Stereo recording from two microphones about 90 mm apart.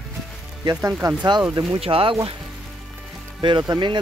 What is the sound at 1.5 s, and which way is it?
Speech, 60° right (ahead or behind).